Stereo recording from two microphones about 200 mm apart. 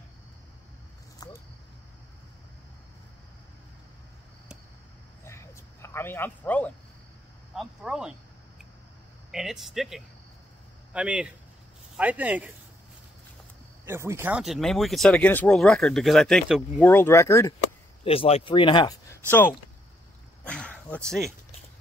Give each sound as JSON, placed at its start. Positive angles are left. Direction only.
{"t": 1.2, "sound": "a sound", "side_deg": 20}
{"t": 5.2, "sound": "a sound", "side_deg": 15}
{"t": 7.5, "sound": "speech", "side_deg": 0}
{"t": 9.3, "sound": "speech", "side_deg": 0}
{"t": 13.8, "sound": "speech", "side_deg": -15}
{"t": 18.0, "sound": "speech", "side_deg": 30}
{"t": 20.4, "sound": "dog", "side_deg": 5}